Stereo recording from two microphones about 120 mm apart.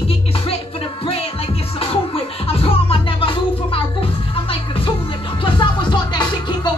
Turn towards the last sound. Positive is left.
turn(degrees=40)  # may be behind; listen again after turning